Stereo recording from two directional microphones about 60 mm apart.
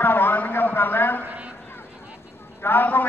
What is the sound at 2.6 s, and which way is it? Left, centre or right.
Speech, left.